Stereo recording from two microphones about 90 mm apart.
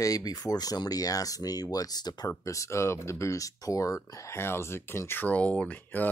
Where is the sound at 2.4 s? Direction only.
35° left (ahead or behind).